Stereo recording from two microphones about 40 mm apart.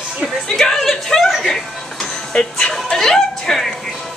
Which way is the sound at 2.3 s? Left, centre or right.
Left.